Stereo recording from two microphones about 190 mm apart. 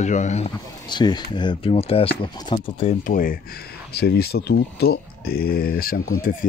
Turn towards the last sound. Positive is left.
turn(degrees=50)  # may be behind; listen again after turning